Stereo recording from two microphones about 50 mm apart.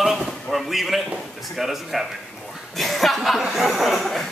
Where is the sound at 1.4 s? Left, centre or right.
Centre.